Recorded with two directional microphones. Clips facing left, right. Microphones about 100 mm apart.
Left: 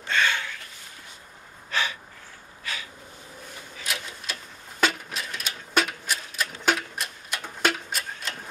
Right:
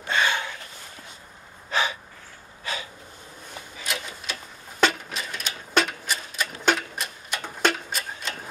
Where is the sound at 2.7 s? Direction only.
25° right (ahead or behind).